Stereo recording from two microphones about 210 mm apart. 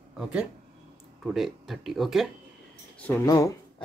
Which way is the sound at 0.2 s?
5° right (ahead or behind).